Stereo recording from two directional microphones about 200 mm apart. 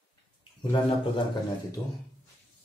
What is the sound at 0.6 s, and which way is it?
Speech, 25° left (ahead or behind).